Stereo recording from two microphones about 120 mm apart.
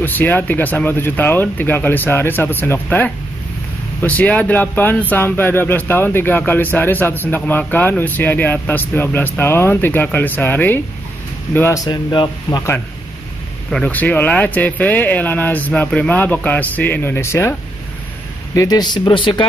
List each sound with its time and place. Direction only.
0.0 s speech: 15° left (ahead or behind)
11.8 s speech: 35° left (ahead or behind)
13.7 s speech: 10° left (ahead or behind); by 19.4 s 45° left (ahead or behind)